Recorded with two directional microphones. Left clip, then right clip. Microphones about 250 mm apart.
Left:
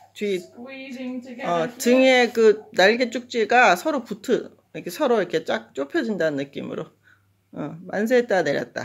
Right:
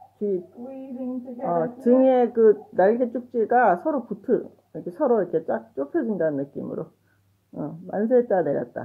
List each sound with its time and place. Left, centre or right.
0.6 s speech: left